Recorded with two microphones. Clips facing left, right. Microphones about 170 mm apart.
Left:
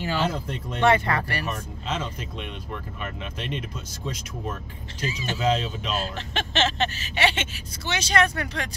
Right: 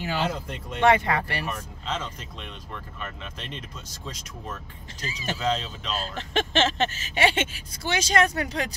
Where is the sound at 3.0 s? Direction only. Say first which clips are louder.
Left 4 dB; 15° left (ahead or behind).